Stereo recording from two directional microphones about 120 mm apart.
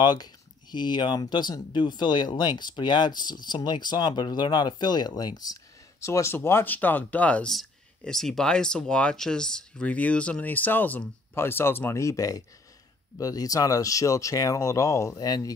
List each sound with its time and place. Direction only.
0.0 s speech: 35° left (ahead or behind)